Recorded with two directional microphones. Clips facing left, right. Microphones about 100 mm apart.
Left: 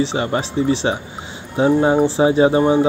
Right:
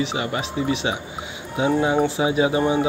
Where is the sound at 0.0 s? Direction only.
35° left (ahead or behind).